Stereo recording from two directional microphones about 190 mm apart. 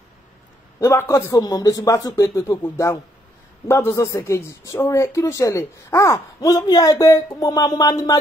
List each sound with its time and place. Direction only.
0.7 s a man's voice: 15° left (ahead or behind)